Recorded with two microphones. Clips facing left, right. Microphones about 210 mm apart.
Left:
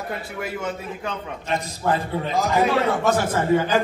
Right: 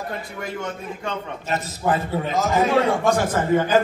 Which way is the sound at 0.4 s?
5° left (ahead or behind).